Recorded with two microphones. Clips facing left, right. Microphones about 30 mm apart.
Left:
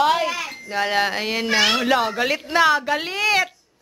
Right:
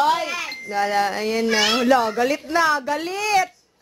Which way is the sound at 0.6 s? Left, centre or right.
Left.